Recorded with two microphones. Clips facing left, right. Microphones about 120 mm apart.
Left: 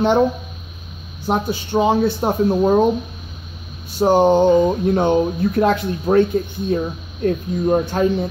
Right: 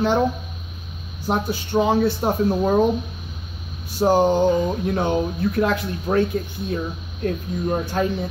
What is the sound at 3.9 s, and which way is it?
Speech, 20° left (ahead or behind).